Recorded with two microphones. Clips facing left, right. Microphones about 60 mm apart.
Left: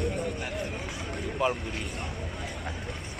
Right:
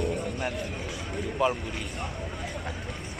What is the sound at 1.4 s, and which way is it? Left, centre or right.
Speech, centre.